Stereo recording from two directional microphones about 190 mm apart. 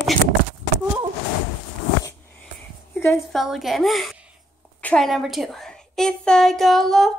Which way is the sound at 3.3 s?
Centre (ahead or behind).